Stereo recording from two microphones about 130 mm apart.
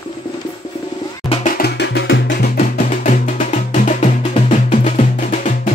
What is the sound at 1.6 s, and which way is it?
Music, 90° left.